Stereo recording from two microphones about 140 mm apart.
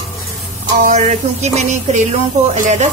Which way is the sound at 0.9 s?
55° right (ahead or behind).